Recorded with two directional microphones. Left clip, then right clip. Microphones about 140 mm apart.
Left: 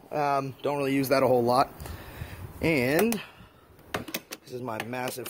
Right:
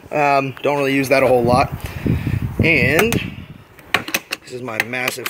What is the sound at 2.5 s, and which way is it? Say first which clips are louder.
Speech: right 10 dB; 30° left (ahead or behind).